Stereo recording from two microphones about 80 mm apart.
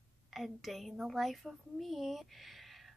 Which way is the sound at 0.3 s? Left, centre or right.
Centre.